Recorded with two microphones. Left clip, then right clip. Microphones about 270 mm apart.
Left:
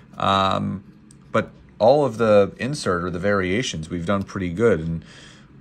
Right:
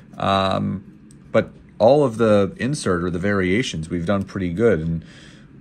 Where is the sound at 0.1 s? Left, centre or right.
Centre.